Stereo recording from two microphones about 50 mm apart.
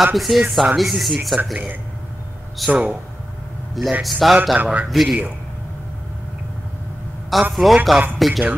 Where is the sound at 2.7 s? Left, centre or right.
Right.